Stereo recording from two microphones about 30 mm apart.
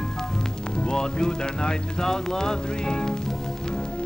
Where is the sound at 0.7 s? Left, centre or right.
Left.